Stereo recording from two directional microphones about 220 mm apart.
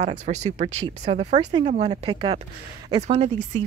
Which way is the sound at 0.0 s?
30° right (ahead or behind).